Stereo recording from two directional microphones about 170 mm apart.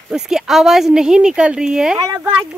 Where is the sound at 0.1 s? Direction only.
5° right (ahead or behind).